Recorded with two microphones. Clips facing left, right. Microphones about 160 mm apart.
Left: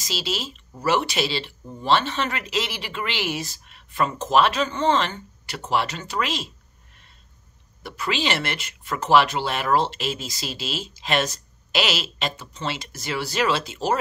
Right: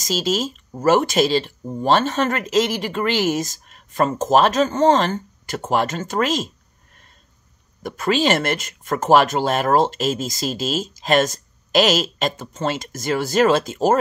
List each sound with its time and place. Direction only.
0.0 s speech: 45° right (ahead or behind)
7.8 s speech: 45° right (ahead or behind)